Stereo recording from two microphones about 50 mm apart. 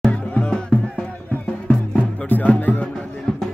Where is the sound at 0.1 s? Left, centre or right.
Left.